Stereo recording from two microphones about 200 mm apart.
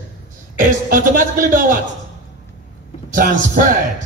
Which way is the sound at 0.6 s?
45° right (ahead or behind).